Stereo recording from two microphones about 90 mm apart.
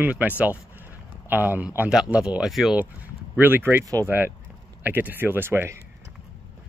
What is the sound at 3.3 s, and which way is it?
Speech, 20° right (ahead or behind).